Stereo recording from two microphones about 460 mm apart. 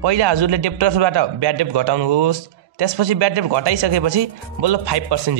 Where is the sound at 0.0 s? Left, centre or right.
Right.